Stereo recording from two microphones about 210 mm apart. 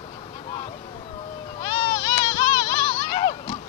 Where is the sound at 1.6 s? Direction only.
20° left (ahead or behind).